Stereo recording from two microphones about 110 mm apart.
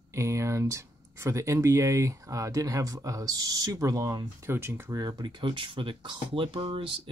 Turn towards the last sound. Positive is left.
turn(degrees=-50)  # may be behind; listen again after turning